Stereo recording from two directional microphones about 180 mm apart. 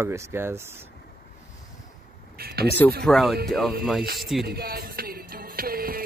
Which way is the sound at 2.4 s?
60° right (ahead or behind).